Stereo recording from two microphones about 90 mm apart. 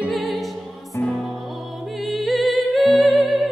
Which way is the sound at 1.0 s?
25° left (ahead or behind).